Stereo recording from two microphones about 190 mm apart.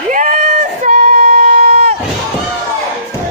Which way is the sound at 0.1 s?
40° right (ahead or behind).